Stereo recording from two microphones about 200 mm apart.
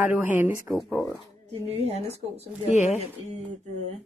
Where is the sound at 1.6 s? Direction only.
30° right (ahead or behind).